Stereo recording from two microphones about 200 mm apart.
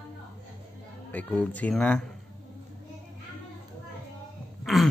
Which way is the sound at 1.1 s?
5° left (ahead or behind).